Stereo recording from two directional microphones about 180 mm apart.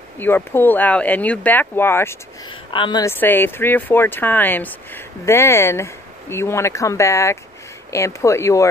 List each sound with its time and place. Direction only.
0.2 s speech: 10° left (ahead or behind)
2.7 s a woman's voice: 25° left (ahead or behind)
3.1 s speech: 10° left (ahead or behind)